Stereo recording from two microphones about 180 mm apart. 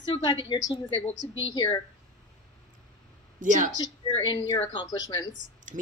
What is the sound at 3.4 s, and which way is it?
Speech, 45° right (ahead or behind).